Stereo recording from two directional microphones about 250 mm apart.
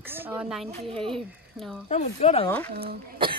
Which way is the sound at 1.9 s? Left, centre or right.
Left.